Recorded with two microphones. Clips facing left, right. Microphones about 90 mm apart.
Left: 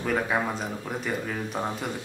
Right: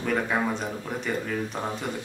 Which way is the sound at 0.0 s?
5° left (ahead or behind).